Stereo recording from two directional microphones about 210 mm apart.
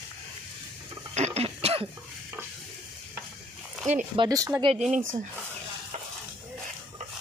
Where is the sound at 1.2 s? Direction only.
30° right (ahead or behind).